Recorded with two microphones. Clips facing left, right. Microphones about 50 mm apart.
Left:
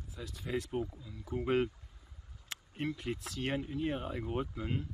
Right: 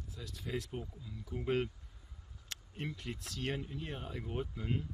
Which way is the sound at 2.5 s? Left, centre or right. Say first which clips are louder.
Left 3 dB; centre.